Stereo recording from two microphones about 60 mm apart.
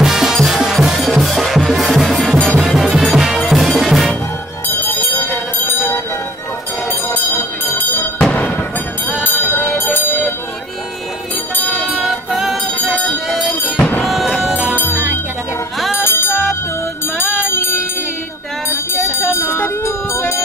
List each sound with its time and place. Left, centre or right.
0.0 s music: centre
2.3 s music: centre
2.9 s music: centre
4.6 s bell: left
6.9 s bell: left
8.2 s music: centre
9.2 s music: left
11.5 s music: left
12.0 s music: centre
14.5 s music: centre
17.2 s music: left
19.4 s music: left